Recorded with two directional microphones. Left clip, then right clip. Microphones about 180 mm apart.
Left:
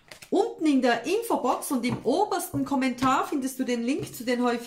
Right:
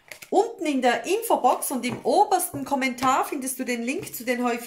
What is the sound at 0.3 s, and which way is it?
Speech, 40° right (ahead or behind).